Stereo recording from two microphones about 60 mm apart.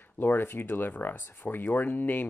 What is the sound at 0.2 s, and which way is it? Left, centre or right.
Speech, left.